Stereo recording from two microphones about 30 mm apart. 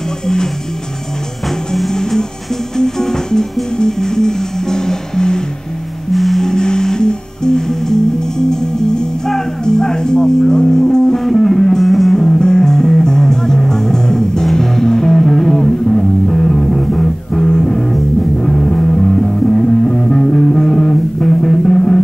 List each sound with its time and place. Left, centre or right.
1.9 s music: centre
6.1 s music: centre
6.4 s music: left
11.8 s music: centre
12.1 s music: left
16.9 s music: left